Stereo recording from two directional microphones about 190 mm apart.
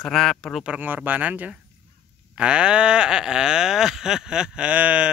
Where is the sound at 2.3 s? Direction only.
5° right (ahead or behind).